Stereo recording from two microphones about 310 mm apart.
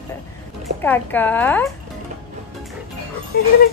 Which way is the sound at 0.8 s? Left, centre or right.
Centre.